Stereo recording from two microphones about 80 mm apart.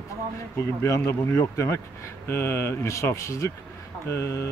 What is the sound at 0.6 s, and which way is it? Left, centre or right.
Speech, left.